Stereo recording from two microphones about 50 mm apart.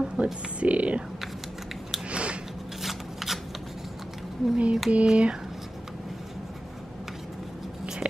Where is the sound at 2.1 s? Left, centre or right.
Right.